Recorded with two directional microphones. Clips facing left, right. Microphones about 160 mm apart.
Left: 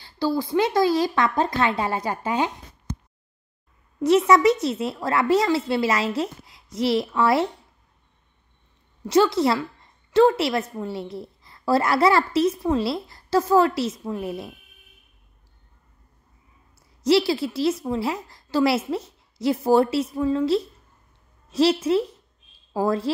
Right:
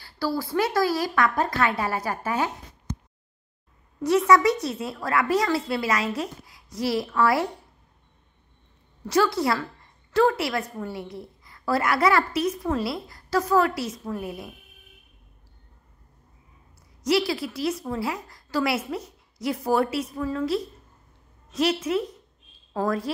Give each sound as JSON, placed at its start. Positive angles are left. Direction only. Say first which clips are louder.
{"t": 0.0, "sound": "a woman's voice", "louder": "left 4 dB", "side_deg": 20}
{"t": 4.0, "sound": "a woman's voice", "louder": "left 2 dB", "side_deg": 25}
{"t": 9.0, "sound": "a woman's voice", "louder": "left 4 dB", "side_deg": 25}
{"t": 17.0, "sound": "a woman's voice", "louder": "left 4 dB", "side_deg": 30}